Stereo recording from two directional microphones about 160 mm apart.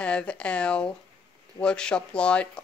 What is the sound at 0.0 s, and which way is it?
Speech, 5° left (ahead or behind).